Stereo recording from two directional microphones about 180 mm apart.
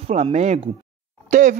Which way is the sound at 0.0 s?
35° right (ahead or behind).